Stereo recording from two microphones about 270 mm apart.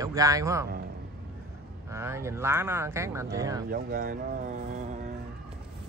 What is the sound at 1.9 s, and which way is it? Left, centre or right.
Speech, centre.